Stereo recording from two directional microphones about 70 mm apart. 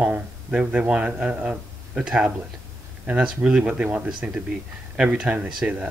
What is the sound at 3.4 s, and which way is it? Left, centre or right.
Speech, centre.